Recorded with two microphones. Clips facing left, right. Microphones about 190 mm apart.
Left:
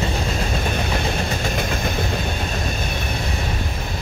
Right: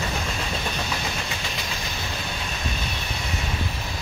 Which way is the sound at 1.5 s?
55° left (ahead or behind).